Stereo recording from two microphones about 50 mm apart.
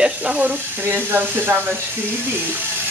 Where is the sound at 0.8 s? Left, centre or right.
Right.